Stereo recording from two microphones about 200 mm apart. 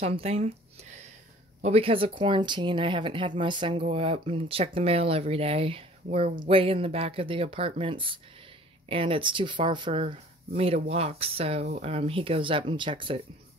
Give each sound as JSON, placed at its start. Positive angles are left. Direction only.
{"t": 0.0, "sound": "speech", "side_deg": -30}
{"t": 1.6, "sound": "speech", "side_deg": -30}
{"t": 6.5, "sound": "speech", "side_deg": -25}